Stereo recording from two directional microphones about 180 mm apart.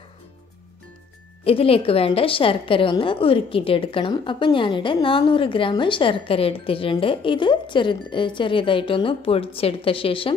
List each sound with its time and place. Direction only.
1.4 s a woman's voice: 30° left (ahead or behind)